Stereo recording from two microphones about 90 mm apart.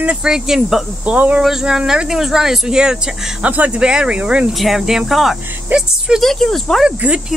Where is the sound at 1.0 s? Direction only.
15° right (ahead or behind).